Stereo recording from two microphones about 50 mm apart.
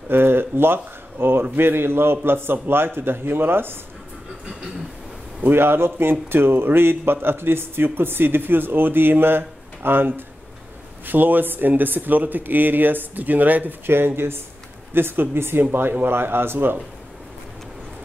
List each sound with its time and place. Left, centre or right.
0.1 s a sound: right
0.7 s speech: right
5.5 s speech: right
13.8 s speech: right